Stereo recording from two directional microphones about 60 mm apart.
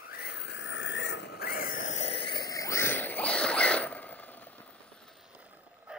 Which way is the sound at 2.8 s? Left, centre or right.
Left.